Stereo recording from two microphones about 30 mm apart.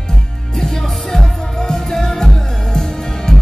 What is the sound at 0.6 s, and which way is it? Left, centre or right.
Music, centre.